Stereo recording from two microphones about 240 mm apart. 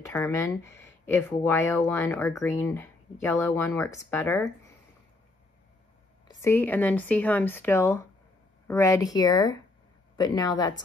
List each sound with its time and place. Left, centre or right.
0.1 s speech: centre
6.2 s speech: centre